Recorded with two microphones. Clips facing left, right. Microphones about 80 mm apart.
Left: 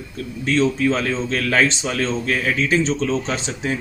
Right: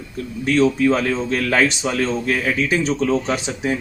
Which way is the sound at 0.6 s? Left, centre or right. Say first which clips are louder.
Right 3 dB; centre.